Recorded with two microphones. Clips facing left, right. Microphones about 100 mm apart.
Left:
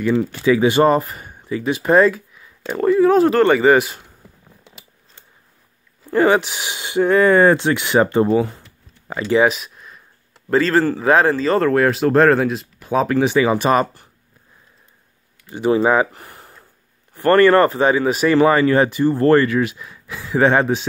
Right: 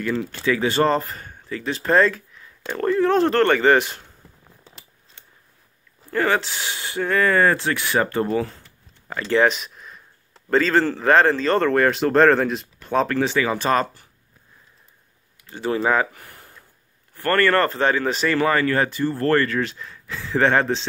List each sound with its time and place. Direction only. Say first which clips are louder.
0.0 s speech: left 6 dB; 10° left (ahead or behind)
6.0 s speech: left 6 dB; 20° left (ahead or behind)
15.4 s speech: left 6 dB; 15° left (ahead or behind)